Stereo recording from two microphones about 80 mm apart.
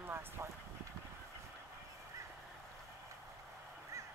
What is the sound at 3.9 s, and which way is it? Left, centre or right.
Duck, right.